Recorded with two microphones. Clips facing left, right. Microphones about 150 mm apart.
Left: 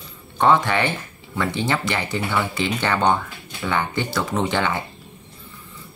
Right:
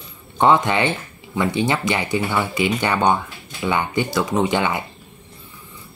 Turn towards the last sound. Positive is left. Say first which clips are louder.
# right 3 dB
turn(degrees=-15)  # may be behind; listen again after turning